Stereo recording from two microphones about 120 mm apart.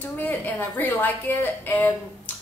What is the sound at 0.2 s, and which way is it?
A woman's voice, 15° left (ahead or behind).